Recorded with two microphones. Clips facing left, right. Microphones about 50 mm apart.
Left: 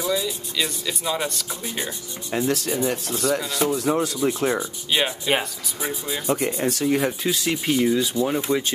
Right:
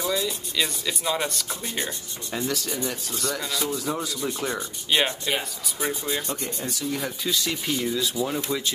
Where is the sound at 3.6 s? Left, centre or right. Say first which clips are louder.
Left 8 dB; left.